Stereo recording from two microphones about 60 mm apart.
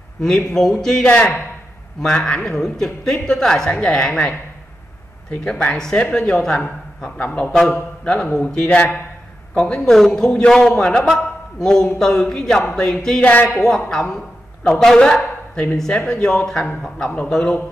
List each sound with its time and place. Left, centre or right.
0.2 s speech: centre
5.4 s speech: centre
7.5 s a man's voice: centre
8.6 s a man's voice: left
9.6 s speech: centre
13.2 s a man's voice: left
13.7 s speech: centre